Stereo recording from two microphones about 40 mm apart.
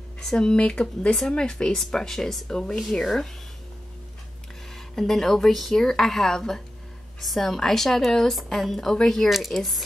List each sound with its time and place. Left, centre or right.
0.2 s speech: centre
4.7 s speech: centre